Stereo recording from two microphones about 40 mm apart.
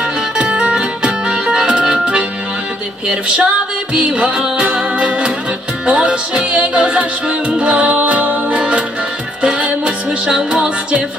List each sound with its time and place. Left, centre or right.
0.0 s music: right
9.8 s music: right
10.6 s music: right